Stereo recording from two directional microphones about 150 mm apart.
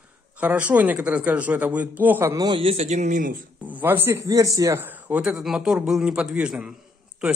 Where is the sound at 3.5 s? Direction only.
10° right (ahead or behind).